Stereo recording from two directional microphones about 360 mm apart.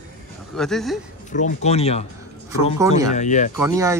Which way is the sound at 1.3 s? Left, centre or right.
Centre.